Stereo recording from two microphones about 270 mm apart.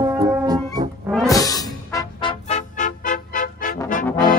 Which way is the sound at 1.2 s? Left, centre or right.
Centre.